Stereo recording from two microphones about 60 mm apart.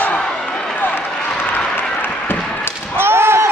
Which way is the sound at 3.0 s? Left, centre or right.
Right.